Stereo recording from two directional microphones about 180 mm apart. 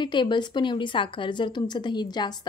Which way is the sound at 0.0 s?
25° left (ahead or behind).